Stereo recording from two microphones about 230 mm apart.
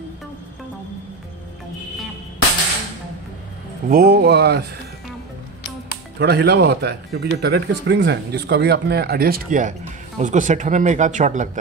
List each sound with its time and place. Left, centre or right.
3.9 s speech: right
6.1 s speech: right